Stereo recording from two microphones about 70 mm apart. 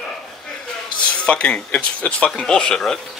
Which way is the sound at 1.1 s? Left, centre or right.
Centre.